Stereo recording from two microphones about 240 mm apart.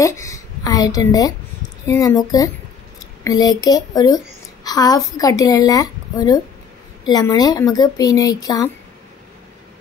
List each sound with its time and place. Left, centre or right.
0.0 s a woman's voice: centre